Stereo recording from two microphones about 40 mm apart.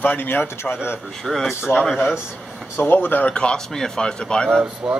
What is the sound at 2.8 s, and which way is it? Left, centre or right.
Speech, left.